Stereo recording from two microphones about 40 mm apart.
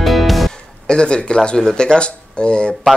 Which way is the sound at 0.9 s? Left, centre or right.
Left.